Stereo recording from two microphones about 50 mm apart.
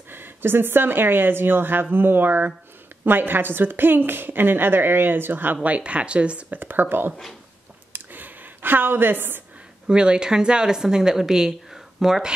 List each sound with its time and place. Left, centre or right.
0.1 s a woman's voice: right
5.6 s speech: right
6.5 s speech: right
7.9 s a sound: right
9.8 s a woman's voice: centre